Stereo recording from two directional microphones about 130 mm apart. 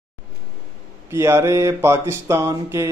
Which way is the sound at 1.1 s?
20° right (ahead or behind).